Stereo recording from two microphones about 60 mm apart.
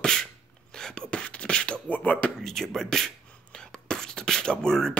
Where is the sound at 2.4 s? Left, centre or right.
Centre.